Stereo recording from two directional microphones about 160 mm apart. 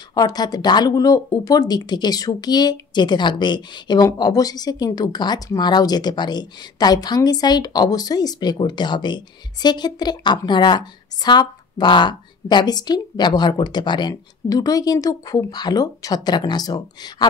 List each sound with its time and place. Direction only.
0.1 s speech: 25° left (ahead or behind)